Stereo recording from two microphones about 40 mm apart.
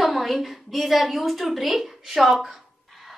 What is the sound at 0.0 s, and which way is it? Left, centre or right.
A woman's voice, centre.